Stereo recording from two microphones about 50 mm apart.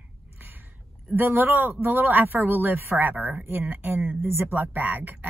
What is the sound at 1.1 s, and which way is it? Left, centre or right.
Speech, right.